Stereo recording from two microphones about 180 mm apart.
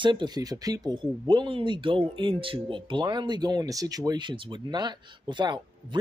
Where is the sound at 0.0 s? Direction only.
25° right (ahead or behind).